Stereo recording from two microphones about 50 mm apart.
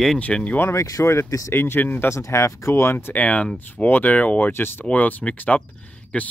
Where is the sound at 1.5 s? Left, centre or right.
Left.